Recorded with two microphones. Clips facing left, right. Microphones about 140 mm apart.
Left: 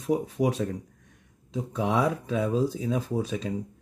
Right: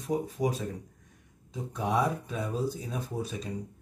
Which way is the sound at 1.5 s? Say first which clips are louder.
Left 4 dB; 90° left.